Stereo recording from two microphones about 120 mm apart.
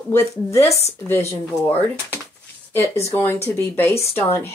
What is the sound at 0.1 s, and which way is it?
Speech, 25° left (ahead or behind).